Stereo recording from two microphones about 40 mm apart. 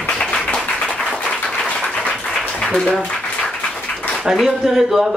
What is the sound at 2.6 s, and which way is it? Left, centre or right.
Speech, centre.